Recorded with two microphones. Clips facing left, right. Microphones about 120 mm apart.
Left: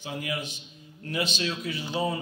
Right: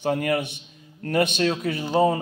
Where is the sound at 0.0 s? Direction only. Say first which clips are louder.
Right 10 dB; 60° right (ahead or behind).